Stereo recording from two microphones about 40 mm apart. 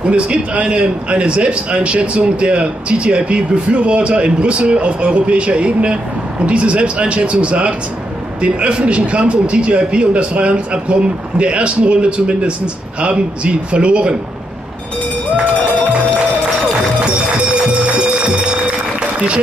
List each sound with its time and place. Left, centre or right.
0.0 s a man's voice: right
19.1 s speech: right